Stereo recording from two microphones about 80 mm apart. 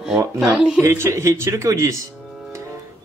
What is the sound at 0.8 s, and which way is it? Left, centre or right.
Speech, right.